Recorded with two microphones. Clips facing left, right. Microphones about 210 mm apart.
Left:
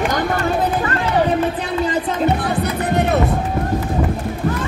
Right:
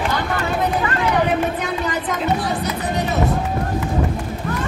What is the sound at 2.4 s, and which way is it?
Music, 55° left (ahead or behind).